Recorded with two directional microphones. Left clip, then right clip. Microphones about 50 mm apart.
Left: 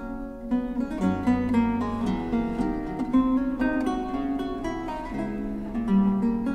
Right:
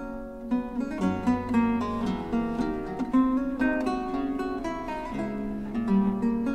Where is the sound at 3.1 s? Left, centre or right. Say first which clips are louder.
Left 1 dB; centre.